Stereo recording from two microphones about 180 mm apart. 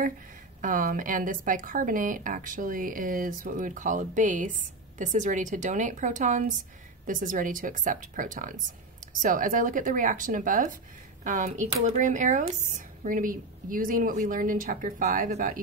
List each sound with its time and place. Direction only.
0.6 s speech: 45° right (ahead or behind)